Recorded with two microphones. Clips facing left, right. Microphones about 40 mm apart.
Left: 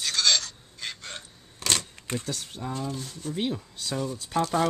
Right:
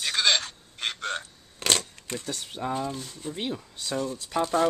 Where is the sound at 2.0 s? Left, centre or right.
Centre.